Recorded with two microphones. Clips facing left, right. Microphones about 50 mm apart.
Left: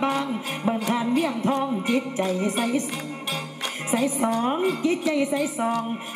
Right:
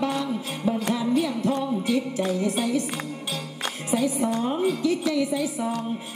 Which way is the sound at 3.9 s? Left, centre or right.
Left.